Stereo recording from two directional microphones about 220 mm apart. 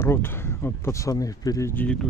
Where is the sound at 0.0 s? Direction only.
10° left (ahead or behind).